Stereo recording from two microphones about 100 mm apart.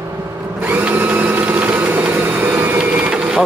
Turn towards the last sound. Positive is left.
turn(degrees=-5)  # may be behind; listen again after turning